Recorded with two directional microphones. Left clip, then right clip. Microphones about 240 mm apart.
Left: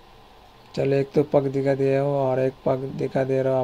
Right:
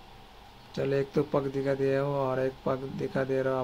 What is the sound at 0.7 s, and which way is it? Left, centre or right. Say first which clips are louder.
Speech: left 7 dB; centre.